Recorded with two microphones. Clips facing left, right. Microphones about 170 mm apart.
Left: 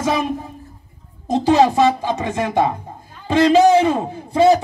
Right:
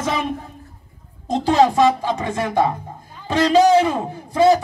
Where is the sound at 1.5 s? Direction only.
15° left (ahead or behind).